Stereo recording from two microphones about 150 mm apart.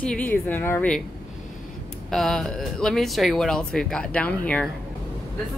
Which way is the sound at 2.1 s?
Centre (ahead or behind).